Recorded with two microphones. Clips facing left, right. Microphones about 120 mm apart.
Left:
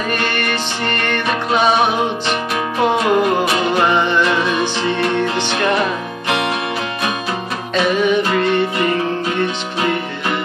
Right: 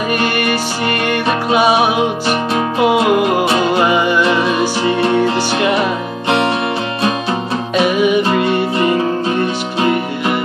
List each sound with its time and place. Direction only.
0.1 s music: 5° right (ahead or behind)
6.2 s music: 30° right (ahead or behind)
7.7 s music: 10° right (ahead or behind)